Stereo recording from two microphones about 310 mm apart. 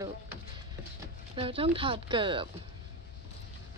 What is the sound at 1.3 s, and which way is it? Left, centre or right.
Speech, centre.